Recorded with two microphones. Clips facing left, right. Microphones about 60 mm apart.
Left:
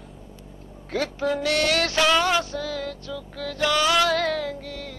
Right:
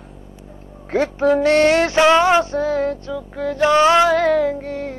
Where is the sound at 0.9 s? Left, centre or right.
Right.